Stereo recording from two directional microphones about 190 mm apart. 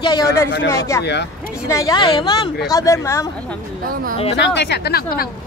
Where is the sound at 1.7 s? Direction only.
20° left (ahead or behind).